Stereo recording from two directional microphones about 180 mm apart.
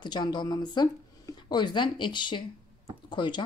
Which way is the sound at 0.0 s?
25° left (ahead or behind).